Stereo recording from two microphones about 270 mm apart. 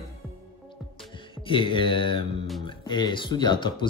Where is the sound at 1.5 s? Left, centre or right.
Centre.